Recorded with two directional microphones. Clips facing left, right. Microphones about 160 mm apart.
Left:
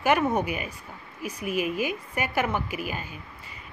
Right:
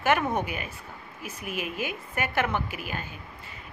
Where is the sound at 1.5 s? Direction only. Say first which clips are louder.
Left 6 dB; 45° left (ahead or behind).